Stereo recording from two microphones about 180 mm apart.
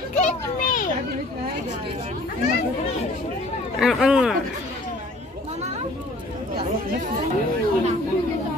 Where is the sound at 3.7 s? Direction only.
Centre (ahead or behind).